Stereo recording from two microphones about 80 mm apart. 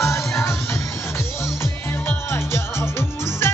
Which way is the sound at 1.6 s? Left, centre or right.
Left.